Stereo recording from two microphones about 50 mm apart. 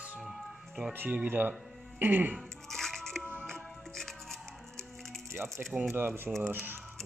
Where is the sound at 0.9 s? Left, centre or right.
Right.